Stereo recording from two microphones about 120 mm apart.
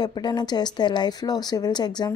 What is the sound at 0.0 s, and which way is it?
A woman's voice, 35° left (ahead or behind).